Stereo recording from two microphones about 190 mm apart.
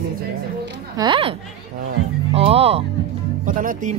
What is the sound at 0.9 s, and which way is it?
Speech, 25° right (ahead or behind).